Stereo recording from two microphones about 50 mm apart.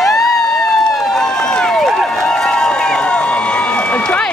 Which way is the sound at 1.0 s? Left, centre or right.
Centre.